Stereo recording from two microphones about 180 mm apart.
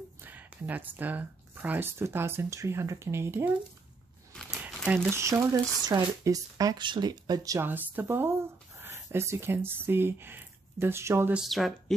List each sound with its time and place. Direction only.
0.2 s speech: 10° right (ahead or behind)
11.4 s speech: centre (ahead or behind)